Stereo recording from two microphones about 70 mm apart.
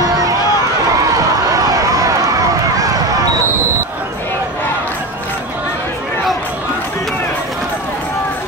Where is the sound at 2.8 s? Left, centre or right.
Right.